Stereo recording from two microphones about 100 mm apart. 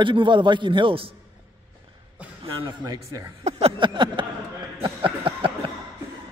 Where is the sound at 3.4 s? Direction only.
90° right.